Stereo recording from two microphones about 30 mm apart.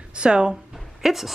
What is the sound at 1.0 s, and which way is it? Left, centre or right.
Speech, centre.